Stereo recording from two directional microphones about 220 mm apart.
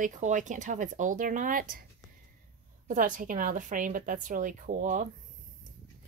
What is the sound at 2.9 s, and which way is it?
A woman's voice, 35° right (ahead or behind).